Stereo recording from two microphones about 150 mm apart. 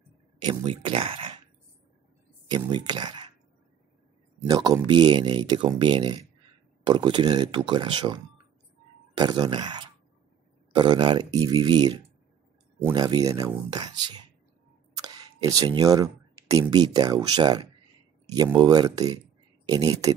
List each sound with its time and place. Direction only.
0.5 s speech: 35° right (ahead or behind)
2.4 s speech: 30° right (ahead or behind)
4.5 s speech: 25° right (ahead or behind)